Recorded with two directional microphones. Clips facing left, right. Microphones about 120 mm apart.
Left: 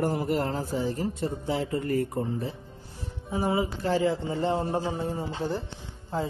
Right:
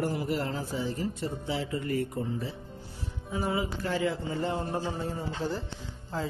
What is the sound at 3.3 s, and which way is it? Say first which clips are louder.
Music: left 4 dB; 30° left (ahead or behind).